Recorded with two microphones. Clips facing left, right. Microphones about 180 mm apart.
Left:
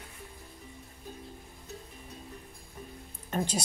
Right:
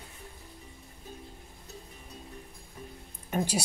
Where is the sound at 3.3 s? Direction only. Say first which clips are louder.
Right 2 dB; 10° right (ahead or behind).